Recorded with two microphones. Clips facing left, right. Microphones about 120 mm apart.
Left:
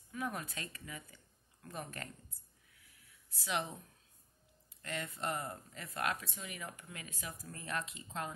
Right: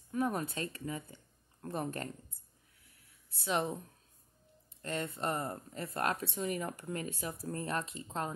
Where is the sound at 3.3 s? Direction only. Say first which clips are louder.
Right 5 dB; 30° right (ahead or behind).